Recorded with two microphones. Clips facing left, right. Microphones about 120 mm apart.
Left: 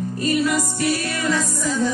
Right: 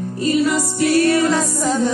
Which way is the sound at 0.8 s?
65° right (ahead or behind).